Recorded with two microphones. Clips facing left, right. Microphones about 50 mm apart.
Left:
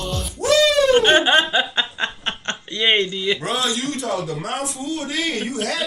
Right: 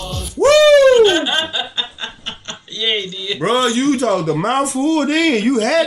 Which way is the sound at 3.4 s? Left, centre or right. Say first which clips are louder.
Right 7 dB; right.